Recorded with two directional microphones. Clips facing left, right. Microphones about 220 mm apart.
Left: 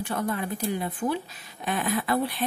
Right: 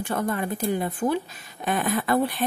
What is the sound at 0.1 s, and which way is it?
Speech, 50° right (ahead or behind).